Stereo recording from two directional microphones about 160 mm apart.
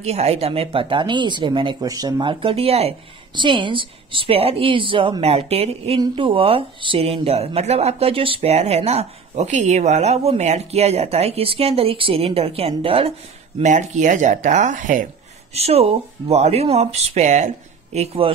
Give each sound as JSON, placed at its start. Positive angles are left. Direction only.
{"t": 0.0, "sound": "speech", "side_deg": -40}
{"t": 13.6, "sound": "speech", "side_deg": -50}
{"t": 15.5, "sound": "speech", "side_deg": -40}